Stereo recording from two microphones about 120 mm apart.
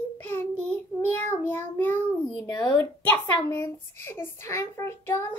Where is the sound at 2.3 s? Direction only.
30° left (ahead or behind).